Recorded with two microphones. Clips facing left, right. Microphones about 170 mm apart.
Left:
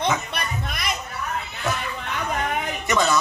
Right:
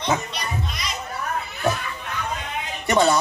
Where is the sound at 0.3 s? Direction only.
55° left (ahead or behind).